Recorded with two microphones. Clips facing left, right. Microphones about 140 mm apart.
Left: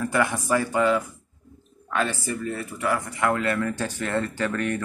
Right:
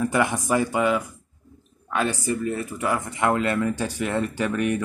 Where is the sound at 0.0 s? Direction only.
15° right (ahead or behind).